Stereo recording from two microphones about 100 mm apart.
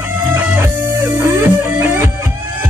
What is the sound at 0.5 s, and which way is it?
Music, 15° right (ahead or behind).